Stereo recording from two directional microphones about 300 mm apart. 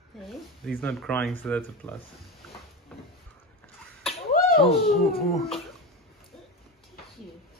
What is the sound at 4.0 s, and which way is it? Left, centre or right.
Slap, centre.